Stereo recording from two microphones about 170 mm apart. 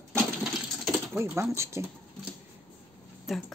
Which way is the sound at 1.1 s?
15° right (ahead or behind).